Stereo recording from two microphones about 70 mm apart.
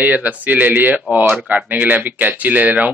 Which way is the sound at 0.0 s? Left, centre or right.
Right.